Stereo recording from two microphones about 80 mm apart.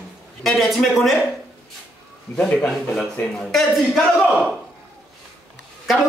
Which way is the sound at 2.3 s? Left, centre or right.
Centre.